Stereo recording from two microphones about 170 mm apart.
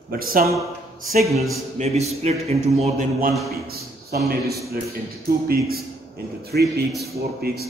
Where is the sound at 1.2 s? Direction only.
Centre (ahead or behind).